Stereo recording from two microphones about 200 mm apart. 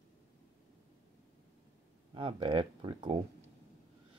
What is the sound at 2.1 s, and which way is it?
Speech, 25° right (ahead or behind).